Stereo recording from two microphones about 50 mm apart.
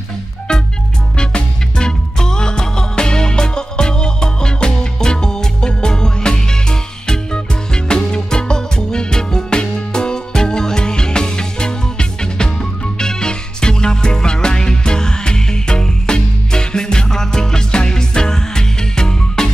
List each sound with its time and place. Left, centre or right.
1.1 s music: centre